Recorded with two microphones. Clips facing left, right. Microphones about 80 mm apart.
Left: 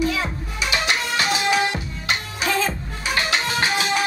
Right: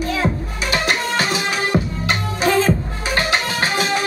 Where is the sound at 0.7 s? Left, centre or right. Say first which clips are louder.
Right 3 dB; right.